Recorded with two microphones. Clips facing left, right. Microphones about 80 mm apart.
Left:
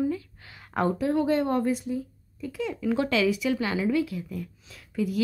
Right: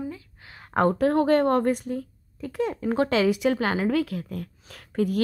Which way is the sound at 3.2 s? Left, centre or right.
Right.